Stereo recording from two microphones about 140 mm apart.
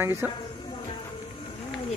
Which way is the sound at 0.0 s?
15° right (ahead or behind).